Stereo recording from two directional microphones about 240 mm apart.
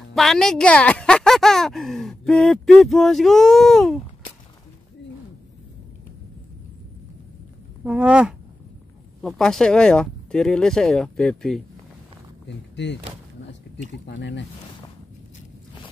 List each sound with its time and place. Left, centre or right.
0.1 s speech: centre
7.8 s speech: centre
12.4 s speech: left
14.0 s speech: left